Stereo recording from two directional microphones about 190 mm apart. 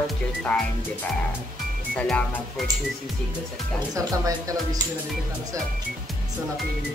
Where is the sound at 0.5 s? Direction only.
5° left (ahead or behind).